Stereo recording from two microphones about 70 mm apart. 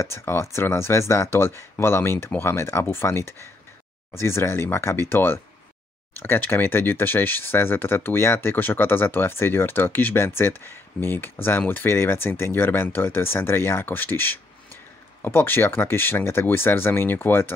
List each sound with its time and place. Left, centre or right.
0.0 s speech: left